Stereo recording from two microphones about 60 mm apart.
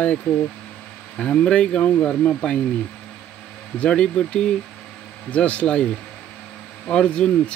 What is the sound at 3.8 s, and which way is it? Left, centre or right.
Speech, centre.